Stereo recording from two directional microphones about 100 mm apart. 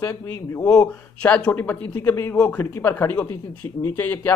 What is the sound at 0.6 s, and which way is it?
Speech, 35° left (ahead or behind).